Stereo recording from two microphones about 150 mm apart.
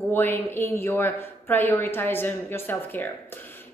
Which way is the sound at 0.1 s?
15° left (ahead or behind).